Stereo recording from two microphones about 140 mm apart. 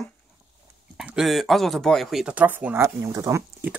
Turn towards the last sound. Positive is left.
turn(degrees=-20)  # may be behind; listen again after turning